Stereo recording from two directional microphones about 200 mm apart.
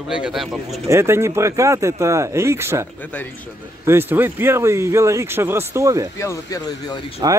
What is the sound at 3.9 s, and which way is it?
Speech, 10° right (ahead or behind).